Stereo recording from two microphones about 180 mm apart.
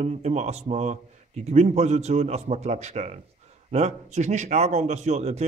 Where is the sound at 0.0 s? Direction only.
35° right (ahead or behind).